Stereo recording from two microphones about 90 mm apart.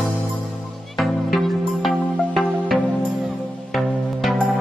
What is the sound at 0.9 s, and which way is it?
Music, centre (ahead or behind).